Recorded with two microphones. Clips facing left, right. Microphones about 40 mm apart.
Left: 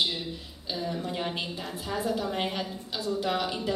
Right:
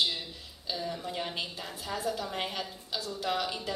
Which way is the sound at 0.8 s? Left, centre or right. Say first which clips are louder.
Left 5 dB; centre.